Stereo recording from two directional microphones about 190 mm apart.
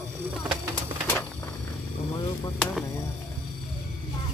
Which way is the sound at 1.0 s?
10° left (ahead or behind).